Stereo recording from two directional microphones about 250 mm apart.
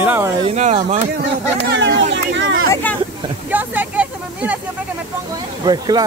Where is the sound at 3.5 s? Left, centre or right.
Centre.